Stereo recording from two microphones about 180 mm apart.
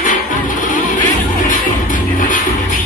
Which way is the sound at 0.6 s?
45° left (ahead or behind).